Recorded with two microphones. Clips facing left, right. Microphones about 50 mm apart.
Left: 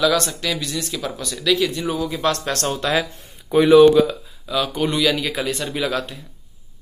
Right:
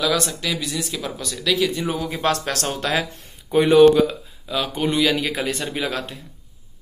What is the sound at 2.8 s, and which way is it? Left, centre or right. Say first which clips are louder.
Speech: left 2 dB; centre.